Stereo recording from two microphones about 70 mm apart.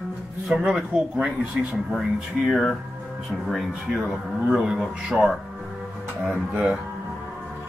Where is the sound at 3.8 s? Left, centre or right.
Centre.